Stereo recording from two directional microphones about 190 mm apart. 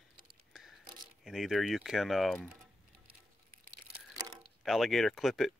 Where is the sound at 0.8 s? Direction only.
20° right (ahead or behind).